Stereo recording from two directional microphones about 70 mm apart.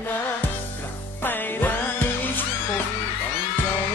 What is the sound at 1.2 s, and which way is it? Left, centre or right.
Music, left.